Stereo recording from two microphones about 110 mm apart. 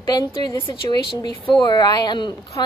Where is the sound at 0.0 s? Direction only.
35° left (ahead or behind).